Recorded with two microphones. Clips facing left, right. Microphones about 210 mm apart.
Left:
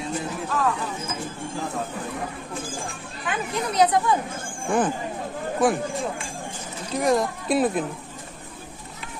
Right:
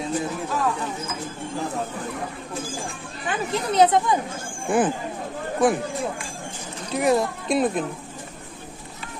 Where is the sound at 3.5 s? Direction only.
25° right (ahead or behind).